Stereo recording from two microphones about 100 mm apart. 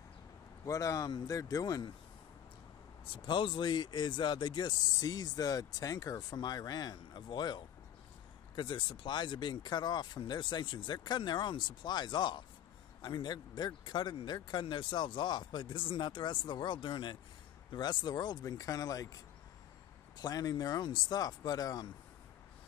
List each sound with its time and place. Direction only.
0.7 s speech: 35° left (ahead or behind)
3.1 s speech: 55° left (ahead or behind); by 21.8 s 40° left (ahead or behind)